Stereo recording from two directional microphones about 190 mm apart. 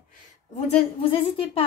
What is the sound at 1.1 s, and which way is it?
Speech, 30° left (ahead or behind).